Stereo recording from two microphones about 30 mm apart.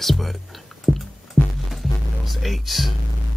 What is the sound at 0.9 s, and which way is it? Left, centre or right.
Music, centre.